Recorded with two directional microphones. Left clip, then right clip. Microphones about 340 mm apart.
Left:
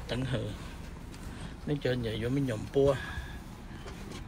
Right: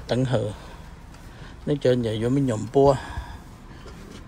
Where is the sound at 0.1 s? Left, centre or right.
Right.